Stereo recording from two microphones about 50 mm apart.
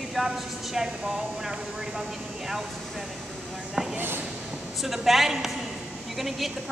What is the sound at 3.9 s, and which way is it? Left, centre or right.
Speech, right.